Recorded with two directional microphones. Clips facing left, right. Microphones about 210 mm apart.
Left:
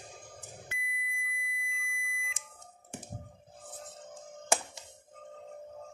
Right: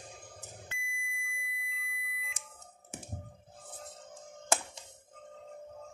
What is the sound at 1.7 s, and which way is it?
Smoke detector, 25° right (ahead or behind).